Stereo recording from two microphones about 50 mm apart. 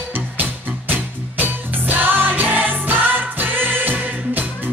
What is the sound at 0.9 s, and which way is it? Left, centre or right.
Music, right.